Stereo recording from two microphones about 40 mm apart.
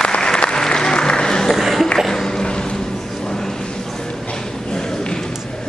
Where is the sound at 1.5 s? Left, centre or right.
Centre.